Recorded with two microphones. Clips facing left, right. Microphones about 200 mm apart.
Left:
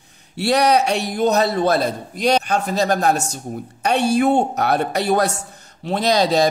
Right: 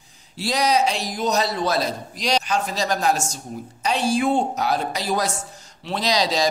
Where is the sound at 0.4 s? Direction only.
65° left (ahead or behind).